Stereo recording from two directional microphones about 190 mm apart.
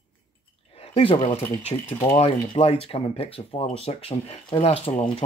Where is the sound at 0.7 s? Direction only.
30° left (ahead or behind).